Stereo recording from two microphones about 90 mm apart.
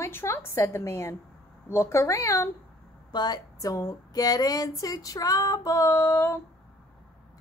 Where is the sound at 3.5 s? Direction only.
40° left (ahead or behind).